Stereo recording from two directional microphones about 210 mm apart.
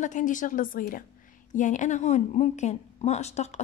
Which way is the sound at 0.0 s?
35° left (ahead or behind).